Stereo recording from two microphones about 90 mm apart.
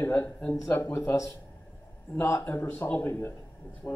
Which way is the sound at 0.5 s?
35° left (ahead or behind).